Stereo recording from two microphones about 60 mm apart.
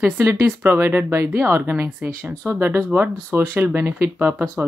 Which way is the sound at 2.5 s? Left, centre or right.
Right.